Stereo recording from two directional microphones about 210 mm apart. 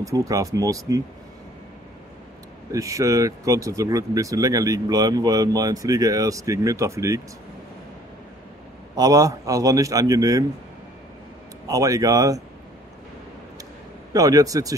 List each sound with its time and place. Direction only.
0.0 s speech: 15° right (ahead or behind)
2.7 s speech: 15° right (ahead or behind)
8.9 s speech: 15° right (ahead or behind)
11.6 s speech: 15° right (ahead or behind)
14.1 s speech: 15° right (ahead or behind)